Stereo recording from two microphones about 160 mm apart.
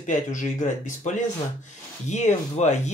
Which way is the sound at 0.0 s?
50° left (ahead or behind).